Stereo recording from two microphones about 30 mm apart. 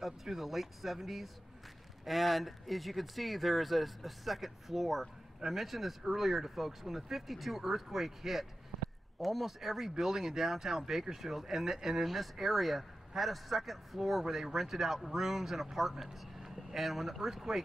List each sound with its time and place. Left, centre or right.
0.0 s speech: centre
11.5 s speech: centre
11.8 s speech: centre
12.1 s speech: centre